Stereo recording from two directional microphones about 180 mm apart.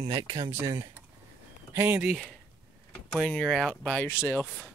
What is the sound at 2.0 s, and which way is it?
Speech, centre (ahead or behind).